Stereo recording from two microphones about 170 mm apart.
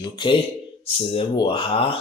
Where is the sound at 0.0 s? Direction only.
25° left (ahead or behind).